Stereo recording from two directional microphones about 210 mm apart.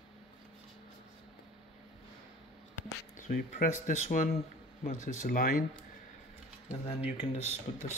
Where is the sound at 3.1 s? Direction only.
35° left (ahead or behind).